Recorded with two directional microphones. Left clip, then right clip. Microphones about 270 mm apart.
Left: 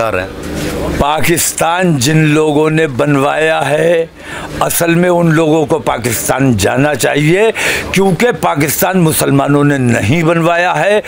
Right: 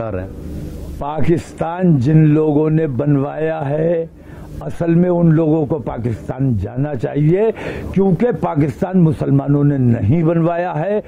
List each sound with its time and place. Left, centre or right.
1.0 s speech: centre
5.5 s speech: left
5.9 s speech: centre